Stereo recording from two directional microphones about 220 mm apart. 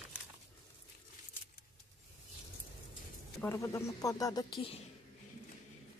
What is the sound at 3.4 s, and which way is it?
A woman's voice, 15° left (ahead or behind).